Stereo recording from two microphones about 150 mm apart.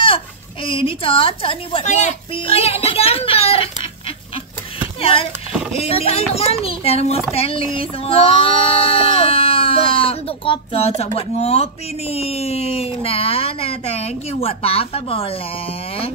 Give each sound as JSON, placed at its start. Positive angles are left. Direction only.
{"t": 0.7, "sound": "a woman's voice", "side_deg": 35}
{"t": 5.0, "sound": "a child's voice", "side_deg": 40}
{"t": 7.3, "sound": "a sound", "side_deg": 40}